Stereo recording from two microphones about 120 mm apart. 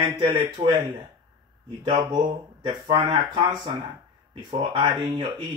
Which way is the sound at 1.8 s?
40° right (ahead or behind).